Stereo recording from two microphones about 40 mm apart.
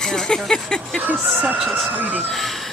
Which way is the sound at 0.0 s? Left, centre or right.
Centre.